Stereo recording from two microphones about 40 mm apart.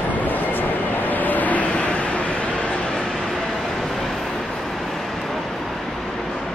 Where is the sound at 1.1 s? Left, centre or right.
Left.